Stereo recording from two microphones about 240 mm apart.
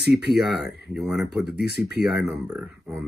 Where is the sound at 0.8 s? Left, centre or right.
Centre.